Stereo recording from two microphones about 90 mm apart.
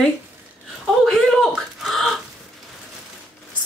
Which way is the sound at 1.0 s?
5° left (ahead or behind).